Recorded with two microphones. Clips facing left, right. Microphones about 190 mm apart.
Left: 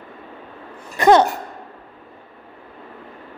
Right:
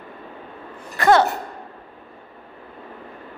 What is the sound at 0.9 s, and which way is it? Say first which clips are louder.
Speech: left 3 dB; 20° left (ahead or behind).